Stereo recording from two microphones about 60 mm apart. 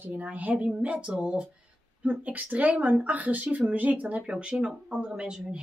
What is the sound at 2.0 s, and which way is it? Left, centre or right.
Speech, right.